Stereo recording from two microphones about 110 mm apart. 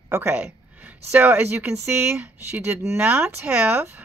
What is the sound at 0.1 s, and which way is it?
Speech, 20° right (ahead or behind).